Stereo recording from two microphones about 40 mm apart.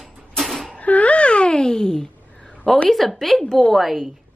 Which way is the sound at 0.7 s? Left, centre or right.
Left.